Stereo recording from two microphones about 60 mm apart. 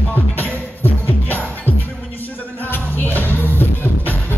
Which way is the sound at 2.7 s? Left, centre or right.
Left.